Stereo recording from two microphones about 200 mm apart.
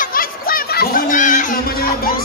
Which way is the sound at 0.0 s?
45° left (ahead or behind).